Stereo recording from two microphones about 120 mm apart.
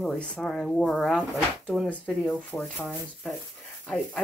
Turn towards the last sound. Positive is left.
turn(degrees=5)  # may be behind; listen again after turning